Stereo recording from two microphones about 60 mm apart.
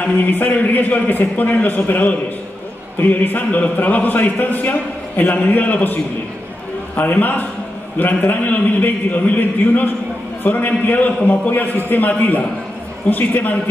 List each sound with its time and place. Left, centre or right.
0.0 s a man's voice: left
7.0 s a man's voice: left